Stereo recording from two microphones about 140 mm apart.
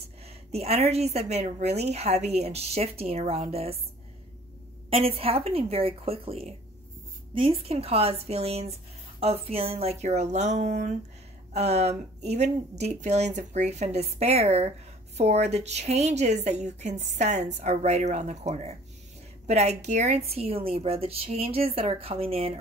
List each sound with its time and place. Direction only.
0.5 s a woman's voice: 50° right (ahead or behind)
4.8 s a woman's voice: 45° right (ahead or behind)